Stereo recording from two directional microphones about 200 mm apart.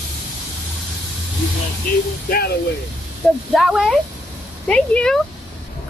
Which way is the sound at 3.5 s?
Centre (ahead or behind).